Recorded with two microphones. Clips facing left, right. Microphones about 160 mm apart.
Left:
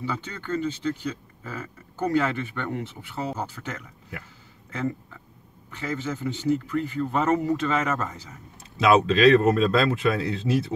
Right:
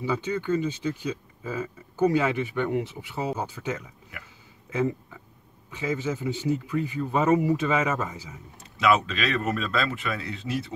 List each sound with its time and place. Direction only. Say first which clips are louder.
0.0 s speech: right 5 dB; 15° right (ahead or behind)
5.7 s speech: right 2 dB; 10° right (ahead or behind)
8.7 s a man's voice: left 4 dB; 35° left (ahead or behind)